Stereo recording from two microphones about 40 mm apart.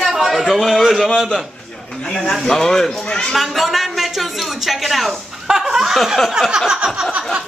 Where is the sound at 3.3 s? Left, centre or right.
Centre.